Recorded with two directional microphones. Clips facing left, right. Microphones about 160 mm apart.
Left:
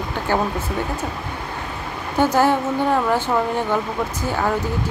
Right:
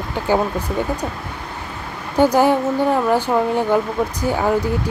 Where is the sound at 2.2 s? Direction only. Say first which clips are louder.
Right 3 dB; 15° right (ahead or behind).